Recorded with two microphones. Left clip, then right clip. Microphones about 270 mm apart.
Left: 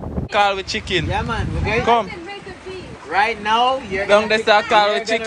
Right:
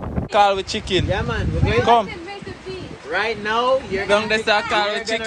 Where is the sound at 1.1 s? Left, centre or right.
Left.